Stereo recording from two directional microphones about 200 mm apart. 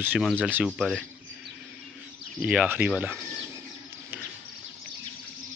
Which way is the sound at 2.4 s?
5° right (ahead or behind).